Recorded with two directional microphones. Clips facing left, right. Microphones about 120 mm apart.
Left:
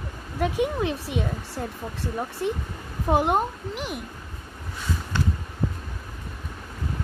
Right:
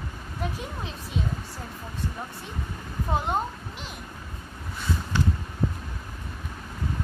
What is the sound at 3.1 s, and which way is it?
Speech, 65° left (ahead or behind).